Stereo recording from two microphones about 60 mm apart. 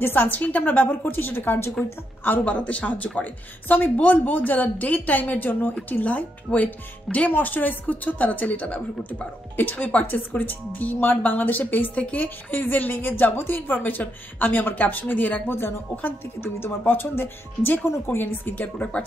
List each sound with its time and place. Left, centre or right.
0.0 s speech: left
2.4 s speech: left